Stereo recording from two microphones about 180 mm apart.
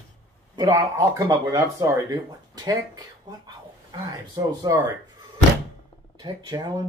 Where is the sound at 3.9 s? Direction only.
20° right (ahead or behind).